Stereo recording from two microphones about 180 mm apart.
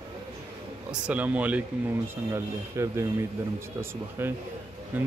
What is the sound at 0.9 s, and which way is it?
Speech, 5° right (ahead or behind).